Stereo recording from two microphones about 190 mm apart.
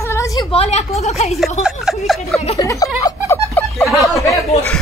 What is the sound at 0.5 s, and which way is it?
Speech, 35° left (ahead or behind).